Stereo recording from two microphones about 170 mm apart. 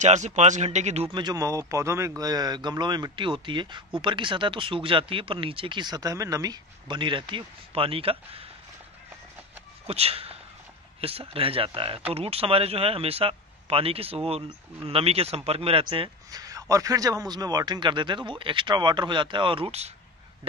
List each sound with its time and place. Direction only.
0.0 s speech: 45° right (ahead or behind)
9.8 s speech: 35° right (ahead or behind)